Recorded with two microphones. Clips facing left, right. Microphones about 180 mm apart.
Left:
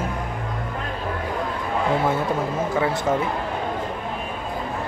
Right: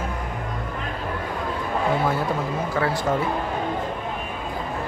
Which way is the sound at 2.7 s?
20° left (ahead or behind).